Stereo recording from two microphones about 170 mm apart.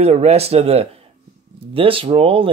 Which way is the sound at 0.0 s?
40° right (ahead or behind).